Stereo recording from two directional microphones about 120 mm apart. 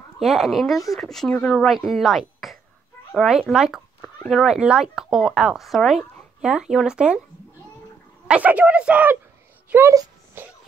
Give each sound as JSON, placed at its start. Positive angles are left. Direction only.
{"t": 0.2, "sound": "speech", "side_deg": 0}
{"t": 8.3, "sound": "speech", "side_deg": -10}
{"t": 10.4, "sound": "a sound", "side_deg": -20}